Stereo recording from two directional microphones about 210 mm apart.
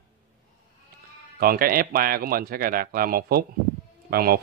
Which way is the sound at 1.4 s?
45° right (ahead or behind).